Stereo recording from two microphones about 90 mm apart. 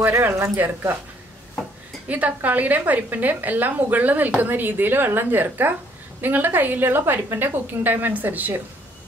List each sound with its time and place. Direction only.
0.0 s a woman's voice: 20° right (ahead or behind)
2.0 s a woman's voice: 15° right (ahead or behind)